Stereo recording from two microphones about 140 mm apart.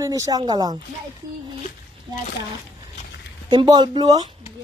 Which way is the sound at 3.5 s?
30° right (ahead or behind).